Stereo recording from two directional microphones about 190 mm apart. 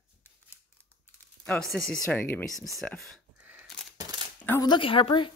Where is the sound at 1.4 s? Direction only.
5° left (ahead or behind).